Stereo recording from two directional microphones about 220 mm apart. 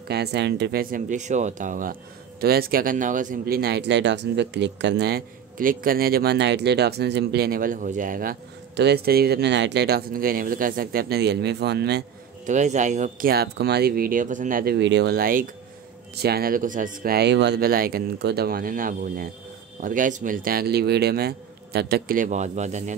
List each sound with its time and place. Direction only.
0.1 s speech: 50° right (ahead or behind)
12.4 s speech: 35° right (ahead or behind)